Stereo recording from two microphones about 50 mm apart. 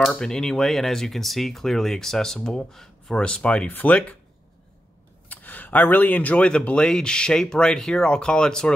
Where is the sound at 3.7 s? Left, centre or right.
Left.